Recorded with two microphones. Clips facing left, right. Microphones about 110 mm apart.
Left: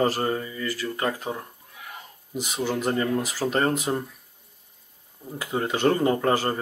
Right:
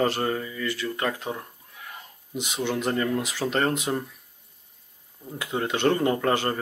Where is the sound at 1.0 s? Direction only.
10° left (ahead or behind).